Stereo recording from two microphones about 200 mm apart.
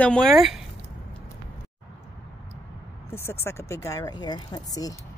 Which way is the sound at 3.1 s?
10° left (ahead or behind).